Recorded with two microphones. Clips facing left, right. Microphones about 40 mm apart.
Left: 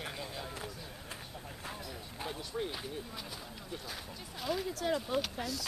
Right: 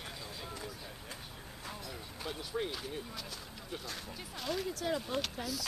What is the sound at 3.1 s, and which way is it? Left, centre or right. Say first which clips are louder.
Speech: left 1 dB; centre.